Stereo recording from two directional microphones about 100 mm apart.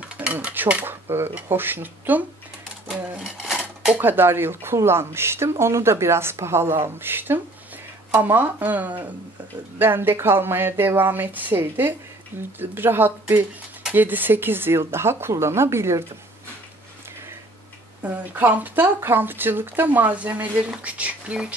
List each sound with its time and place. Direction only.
0.0 s speech: 15° right (ahead or behind)
2.9 s a sound: 10° right (ahead or behind)
4.0 s speech: 20° right (ahead or behind)
18.0 s speech: 20° right (ahead or behind)